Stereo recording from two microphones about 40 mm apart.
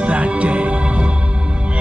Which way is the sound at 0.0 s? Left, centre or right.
Right.